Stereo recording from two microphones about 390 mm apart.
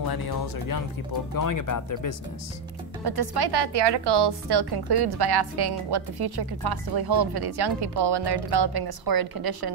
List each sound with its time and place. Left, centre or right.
0.1 s speech: left
1.3 s speech: left
3.0 s a woman's voice: right